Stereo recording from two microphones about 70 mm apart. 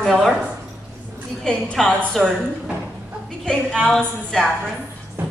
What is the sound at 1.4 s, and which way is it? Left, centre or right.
Speech, centre.